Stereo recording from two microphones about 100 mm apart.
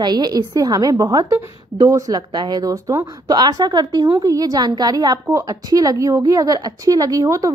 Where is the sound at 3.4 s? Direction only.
40° right (ahead or behind).